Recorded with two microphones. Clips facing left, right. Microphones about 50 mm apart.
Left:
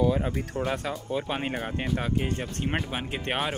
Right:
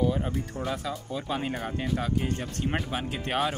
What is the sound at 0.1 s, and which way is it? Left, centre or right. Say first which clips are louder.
Speech: left 2 dB; left.